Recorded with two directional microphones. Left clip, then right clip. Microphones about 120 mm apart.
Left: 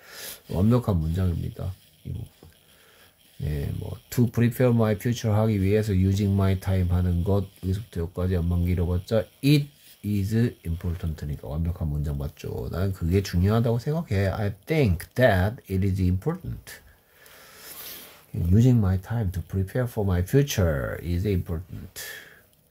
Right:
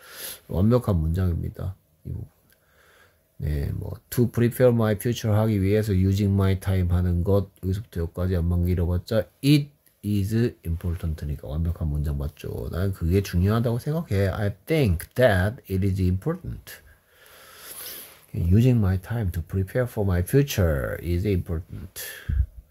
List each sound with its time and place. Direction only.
0.0 s speech: 30° right (ahead or behind)
3.4 s speech: 30° right (ahead or behind)